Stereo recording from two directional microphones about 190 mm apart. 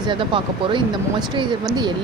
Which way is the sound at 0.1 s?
25° right (ahead or behind).